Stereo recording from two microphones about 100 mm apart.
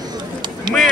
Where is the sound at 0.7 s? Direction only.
50° right (ahead or behind).